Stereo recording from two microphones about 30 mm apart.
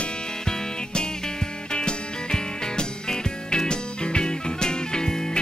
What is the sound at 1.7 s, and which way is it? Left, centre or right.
Music, left.